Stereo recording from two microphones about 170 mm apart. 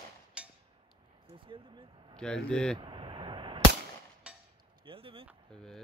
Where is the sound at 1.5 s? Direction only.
25° right (ahead or behind).